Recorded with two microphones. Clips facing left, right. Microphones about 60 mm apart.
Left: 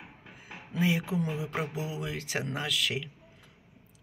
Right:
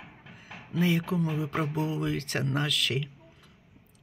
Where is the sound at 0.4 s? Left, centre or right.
Centre.